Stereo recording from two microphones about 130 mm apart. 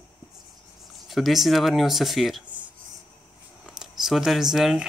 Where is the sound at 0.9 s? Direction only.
Centre (ahead or behind).